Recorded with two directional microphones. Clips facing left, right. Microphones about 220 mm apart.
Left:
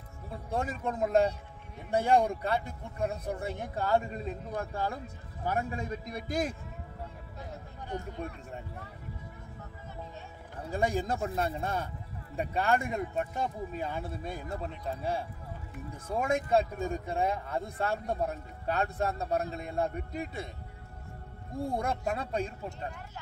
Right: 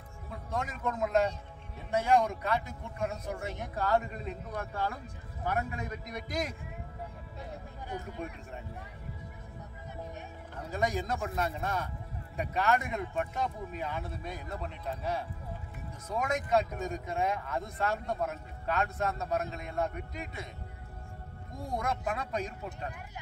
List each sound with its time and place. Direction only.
0.5 s speech: 30° left (ahead or behind)
10.7 s speech: 30° left (ahead or behind)
16.1 s speech: 30° left (ahead or behind)
21.7 s speech: 30° left (ahead or behind)